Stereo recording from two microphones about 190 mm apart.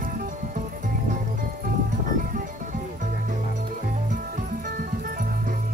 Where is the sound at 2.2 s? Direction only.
45° right (ahead or behind).